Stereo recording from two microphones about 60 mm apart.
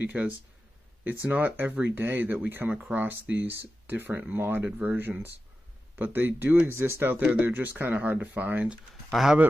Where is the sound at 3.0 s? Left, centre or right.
Right.